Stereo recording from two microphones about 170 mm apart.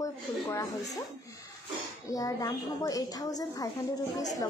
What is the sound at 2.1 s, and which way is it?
A woman's voice, 20° left (ahead or behind).